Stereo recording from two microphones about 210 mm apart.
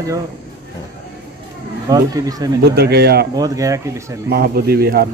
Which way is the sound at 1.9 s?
15° right (ahead or behind).